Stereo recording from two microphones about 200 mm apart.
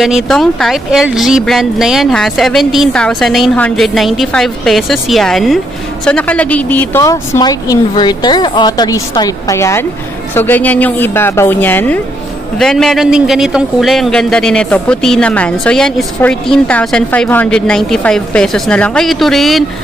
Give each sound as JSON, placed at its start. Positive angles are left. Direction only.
{"t": 0.0, "sound": "a man's voice", "side_deg": 0}